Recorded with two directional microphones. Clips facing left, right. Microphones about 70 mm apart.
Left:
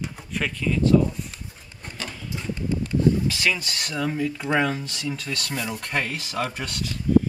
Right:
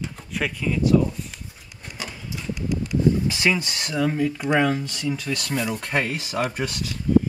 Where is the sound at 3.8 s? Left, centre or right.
Centre.